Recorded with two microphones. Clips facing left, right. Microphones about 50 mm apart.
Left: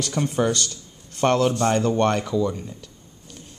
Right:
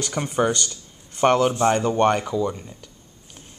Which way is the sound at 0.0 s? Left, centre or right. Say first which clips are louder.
Even; centre.